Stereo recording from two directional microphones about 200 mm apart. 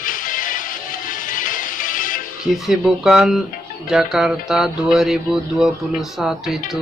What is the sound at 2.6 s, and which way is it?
Speech, centre (ahead or behind).